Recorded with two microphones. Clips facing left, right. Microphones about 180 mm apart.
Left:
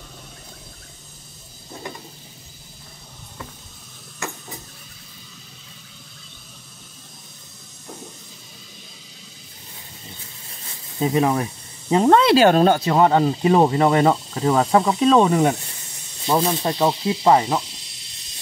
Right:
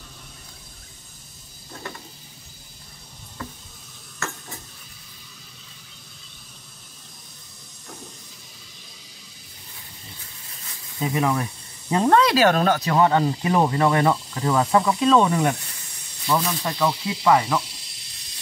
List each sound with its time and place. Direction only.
1.7 s a sound: 15° left (ahead or behind)
4.2 s stir: 15° left (ahead or behind)
11.0 s speech: 25° left (ahead or behind)